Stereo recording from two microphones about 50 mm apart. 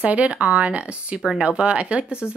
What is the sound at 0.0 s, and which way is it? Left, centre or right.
Speech, right.